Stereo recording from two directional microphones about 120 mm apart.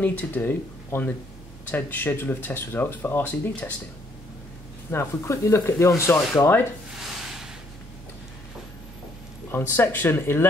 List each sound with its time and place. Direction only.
0.0 s speech: 15° left (ahead or behind)
4.9 s speech: 25° left (ahead or behind)
9.5 s speech: 20° left (ahead or behind)